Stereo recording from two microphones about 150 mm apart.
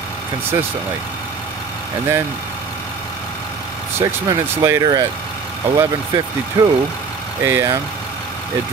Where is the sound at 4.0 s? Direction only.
20° right (ahead or behind).